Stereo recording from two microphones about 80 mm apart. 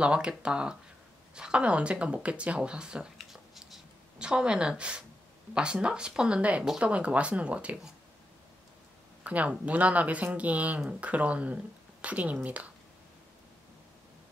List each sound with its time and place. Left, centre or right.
0.0 s speech: centre
9.2 s speech: centre